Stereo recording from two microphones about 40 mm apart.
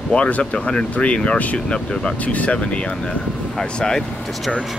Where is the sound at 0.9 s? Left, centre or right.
Left.